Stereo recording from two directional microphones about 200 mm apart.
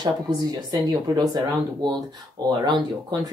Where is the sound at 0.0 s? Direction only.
20° right (ahead or behind).